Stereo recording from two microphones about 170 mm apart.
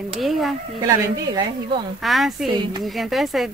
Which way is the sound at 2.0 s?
Centre (ahead or behind).